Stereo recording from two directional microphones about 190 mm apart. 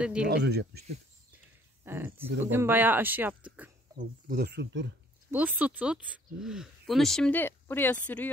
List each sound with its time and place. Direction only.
0.0 s speech: 5° right (ahead or behind)
0.3 s speech: 60° right (ahead or behind)
1.9 s speech: 10° right (ahead or behind)
4.0 s speech: 50° right (ahead or behind); by 4.9 s 65° right (ahead or behind)
5.3 s speech: 10° right (ahead or behind); by 8.3 s 10° left (ahead or behind)